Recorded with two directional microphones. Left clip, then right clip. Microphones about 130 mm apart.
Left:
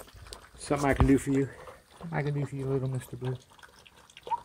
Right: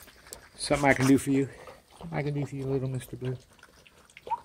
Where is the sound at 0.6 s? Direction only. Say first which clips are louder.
Right 3 dB; 35° right (ahead or behind).